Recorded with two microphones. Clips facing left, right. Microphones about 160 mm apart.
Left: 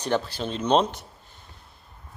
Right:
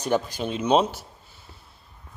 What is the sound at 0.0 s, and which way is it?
A man's voice, 10° right (ahead or behind).